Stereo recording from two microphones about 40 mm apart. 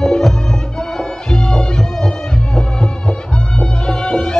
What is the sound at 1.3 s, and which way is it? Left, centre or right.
Music, centre.